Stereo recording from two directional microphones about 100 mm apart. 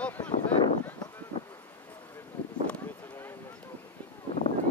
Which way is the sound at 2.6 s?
15° left (ahead or behind).